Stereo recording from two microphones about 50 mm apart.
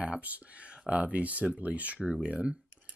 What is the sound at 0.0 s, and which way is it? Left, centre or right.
Speech, right.